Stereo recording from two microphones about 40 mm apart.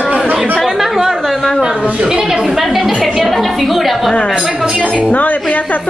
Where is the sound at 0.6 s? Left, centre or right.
Centre.